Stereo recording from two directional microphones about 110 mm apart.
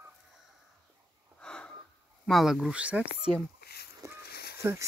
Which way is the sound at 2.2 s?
Centre (ahead or behind).